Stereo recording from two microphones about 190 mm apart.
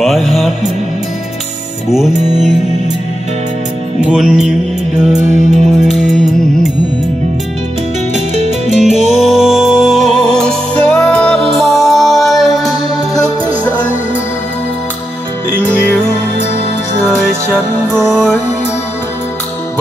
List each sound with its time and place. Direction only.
0.0 s music: centre (ahead or behind)
1.9 s music: centre (ahead or behind)
2.1 s music: 40° right (ahead or behind)
4.0 s music: 5° right (ahead or behind)
5.1 s music: 40° right (ahead or behind)
5.9 s music: centre (ahead or behind)
8.1 s music: 35° right (ahead or behind)
9.2 s music: centre (ahead or behind)